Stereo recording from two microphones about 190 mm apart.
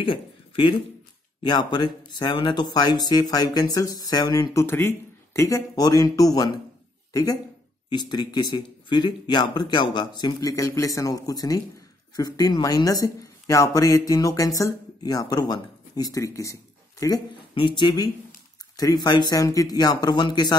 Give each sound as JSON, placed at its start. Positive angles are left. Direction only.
{"t": 0.0, "sound": "speech", "side_deg": 25}